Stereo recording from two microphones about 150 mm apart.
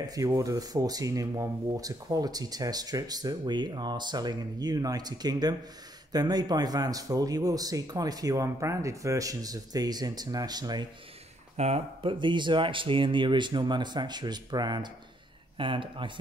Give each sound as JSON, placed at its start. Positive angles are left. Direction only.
{"t": 0.0, "sound": "speech", "side_deg": -25}
{"t": 11.5, "sound": "speech", "side_deg": -45}